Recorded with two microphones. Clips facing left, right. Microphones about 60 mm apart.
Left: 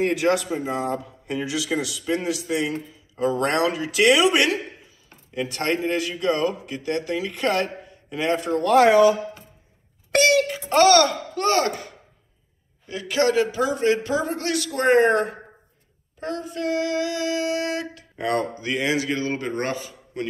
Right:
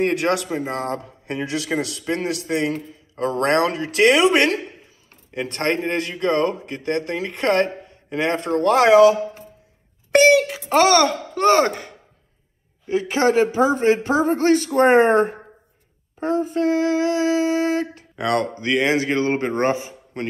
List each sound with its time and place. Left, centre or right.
0.0 s a man's voice: right
10.4 s a child's voice: centre
11.3 s speech: right
12.8 s a man's voice: right
18.1 s speech: right
18.6 s a man's voice: right